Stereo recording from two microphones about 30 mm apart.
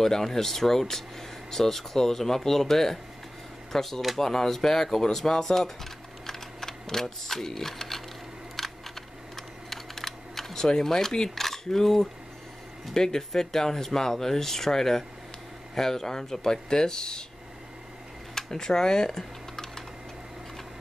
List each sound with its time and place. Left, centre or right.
0.0 s speech: centre
6.2 s sewing machine: centre
8.5 s a sound: centre
9.7 s typing: centre
11.2 s cutlery: centre
12.9 s speech: centre
18.3 s typing: centre